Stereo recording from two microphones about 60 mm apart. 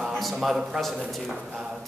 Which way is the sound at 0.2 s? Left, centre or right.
Centre.